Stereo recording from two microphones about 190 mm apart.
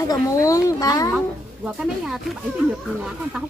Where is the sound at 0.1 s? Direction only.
15° left (ahead or behind).